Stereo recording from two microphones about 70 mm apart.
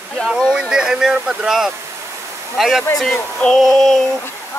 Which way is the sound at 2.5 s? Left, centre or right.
Centre.